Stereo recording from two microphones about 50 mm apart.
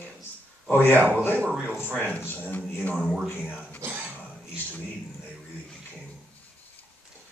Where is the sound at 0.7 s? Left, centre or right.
Left.